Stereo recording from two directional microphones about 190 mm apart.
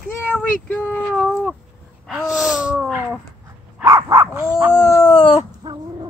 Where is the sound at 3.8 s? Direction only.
20° right (ahead or behind).